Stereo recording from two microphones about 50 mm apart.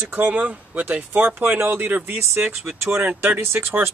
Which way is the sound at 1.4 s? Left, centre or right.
Right.